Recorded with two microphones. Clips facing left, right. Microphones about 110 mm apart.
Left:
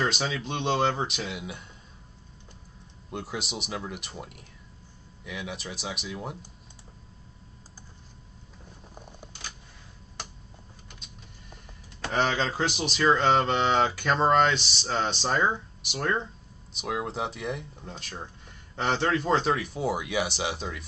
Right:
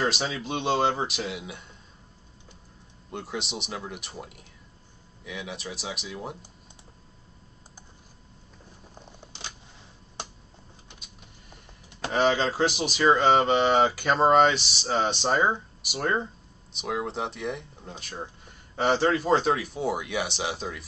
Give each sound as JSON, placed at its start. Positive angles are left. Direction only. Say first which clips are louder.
{"t": 0.3, "sound": "speech", "louder": "right 1 dB", "side_deg": -5}
{"t": 3.1, "sound": "speech", "louder": "right 1 dB", "side_deg": 0}
{"t": 8.9, "sound": "camera", "louder": "left 2 dB", "side_deg": 10}
{"t": 12.1, "sound": "speech", "louder": "right 3 dB", "side_deg": -5}